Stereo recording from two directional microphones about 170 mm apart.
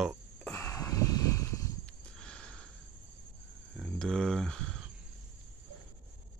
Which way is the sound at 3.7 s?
5° left (ahead or behind).